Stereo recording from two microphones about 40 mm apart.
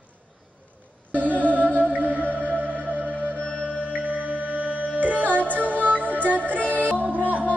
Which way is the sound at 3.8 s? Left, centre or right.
Right.